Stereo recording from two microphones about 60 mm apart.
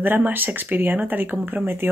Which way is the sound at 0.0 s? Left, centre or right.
Right.